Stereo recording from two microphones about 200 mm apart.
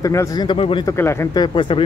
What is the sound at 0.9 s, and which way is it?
Speech, 15° left (ahead or behind).